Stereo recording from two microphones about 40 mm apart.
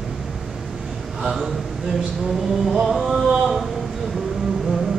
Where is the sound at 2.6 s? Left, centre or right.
Centre.